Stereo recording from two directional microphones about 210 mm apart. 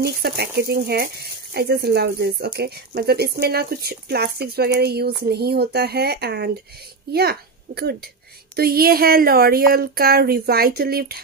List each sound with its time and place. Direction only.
0.0 s a woman's voice: 50° right (ahead or behind)